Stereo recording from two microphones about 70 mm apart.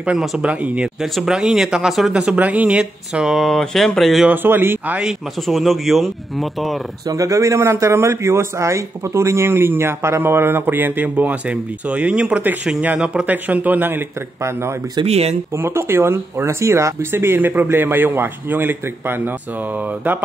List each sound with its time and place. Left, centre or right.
0.1 s speech: centre
0.4 s speech: centre
1.0 s speech: centre
2.1 s speech: centre
4.3 s speech: right
5.0 s speech: centre
7.1 s a man's voice: right
14.4 s a man's voice: right